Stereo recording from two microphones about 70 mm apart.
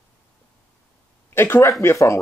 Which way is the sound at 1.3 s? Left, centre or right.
Left.